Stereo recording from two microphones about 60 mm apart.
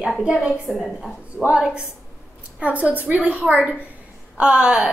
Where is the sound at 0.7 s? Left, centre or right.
Centre.